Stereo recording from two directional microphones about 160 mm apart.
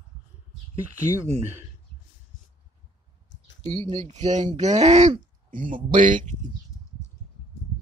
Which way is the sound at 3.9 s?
45° right (ahead or behind).